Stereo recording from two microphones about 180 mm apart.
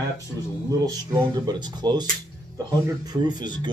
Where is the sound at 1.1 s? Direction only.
25° right (ahead or behind).